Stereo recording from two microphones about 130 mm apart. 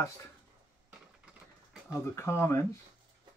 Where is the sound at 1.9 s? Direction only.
20° left (ahead or behind).